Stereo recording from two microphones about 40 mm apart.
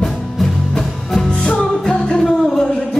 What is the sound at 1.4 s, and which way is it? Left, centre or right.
Music, left.